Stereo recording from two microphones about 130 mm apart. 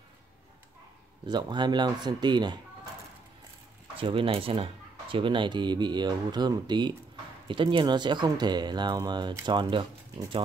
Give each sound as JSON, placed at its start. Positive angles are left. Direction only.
{"t": 1.2, "sound": "speech", "side_deg": -35}
{"t": 3.9, "sound": "speech", "side_deg": -45}